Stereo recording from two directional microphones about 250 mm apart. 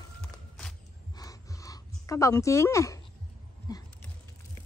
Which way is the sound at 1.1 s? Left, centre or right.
Centre.